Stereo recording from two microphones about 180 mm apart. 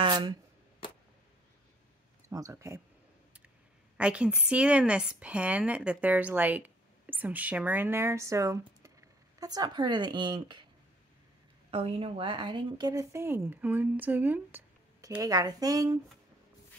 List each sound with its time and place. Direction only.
0.0 s a sound: 25° right (ahead or behind)
2.2 s a woman's voice: 20° right (ahead or behind)
11.7 s a woman's voice: 35° right (ahead or behind)